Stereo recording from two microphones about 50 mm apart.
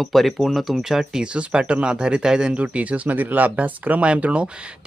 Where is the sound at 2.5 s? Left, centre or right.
Right.